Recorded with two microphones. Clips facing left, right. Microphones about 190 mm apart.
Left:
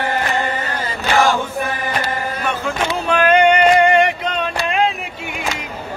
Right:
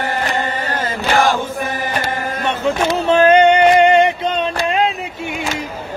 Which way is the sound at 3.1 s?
25° right (ahead or behind).